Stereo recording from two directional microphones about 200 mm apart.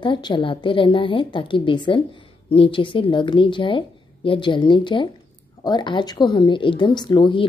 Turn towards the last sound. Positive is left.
turn(degrees=25)  # may be behind; listen again after turning